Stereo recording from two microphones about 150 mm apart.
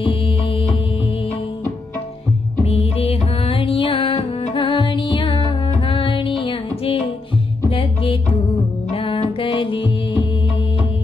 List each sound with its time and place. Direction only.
0.0 s music: 35° left (ahead or behind)
2.6 s music: 45° left (ahead or behind)